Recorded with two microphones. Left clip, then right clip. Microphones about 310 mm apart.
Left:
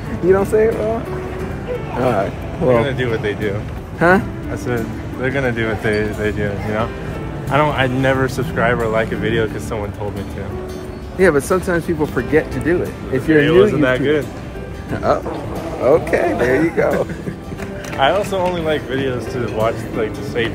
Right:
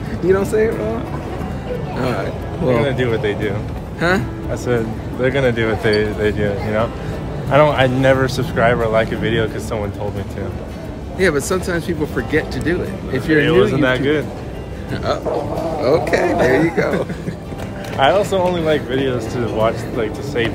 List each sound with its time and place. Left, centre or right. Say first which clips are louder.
0.3 s speech: left 2 dB; centre
2.0 s speech: left 5 dB; centre
2.8 s speech: right 1 dB; centre
4.6 s speech: right 3 dB; centre
11.1 s speech: left 3 dB; centre
13.7 s speech: left 1 dB; centre
15.1 s speech: left 4 dB; centre
15.8 s speech: left 2 dB; centre
17.9 s speech: right 2 dB; centre